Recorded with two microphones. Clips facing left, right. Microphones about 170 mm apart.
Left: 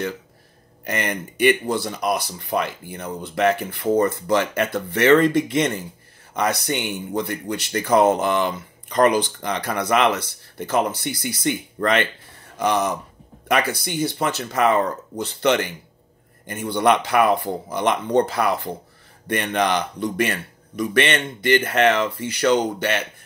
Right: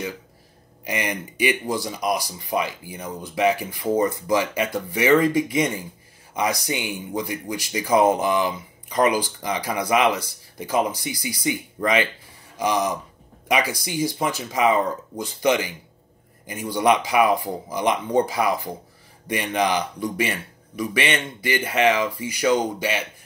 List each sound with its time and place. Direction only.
0.8 s speech: 10° right (ahead or behind)
11.0 s speech: 65° left (ahead or behind)
11.8 s speech: 10° right (ahead or behind)
16.7 s speech: 10° right (ahead or behind)